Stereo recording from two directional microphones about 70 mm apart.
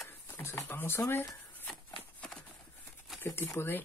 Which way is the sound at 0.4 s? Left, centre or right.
Left.